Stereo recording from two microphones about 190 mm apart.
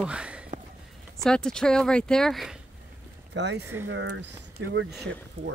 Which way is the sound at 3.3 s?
65° right (ahead or behind).